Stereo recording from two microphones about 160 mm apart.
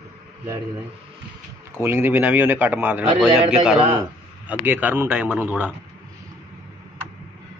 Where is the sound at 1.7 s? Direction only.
15° right (ahead or behind).